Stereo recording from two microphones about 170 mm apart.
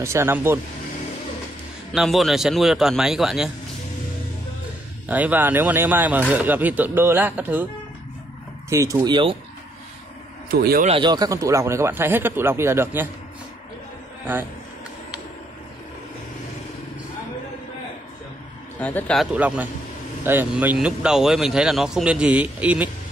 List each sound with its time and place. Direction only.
0.0 s speech: 15° right (ahead or behind)
1.9 s speech: centre (ahead or behind)
5.0 s speech: 10° right (ahead or behind)
8.6 s speech: 15° right (ahead or behind)
10.5 s a man's voice: 65° right (ahead or behind)
11.0 s speech: 25° right (ahead or behind)
18.8 s speech: 10° left (ahead or behind)
19.3 s speech: 10° right (ahead or behind)